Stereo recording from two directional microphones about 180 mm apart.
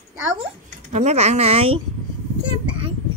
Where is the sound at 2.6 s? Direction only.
30° right (ahead or behind).